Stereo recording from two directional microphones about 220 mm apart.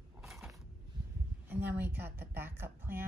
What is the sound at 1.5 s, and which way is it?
A woman's voice, 10° right (ahead or behind).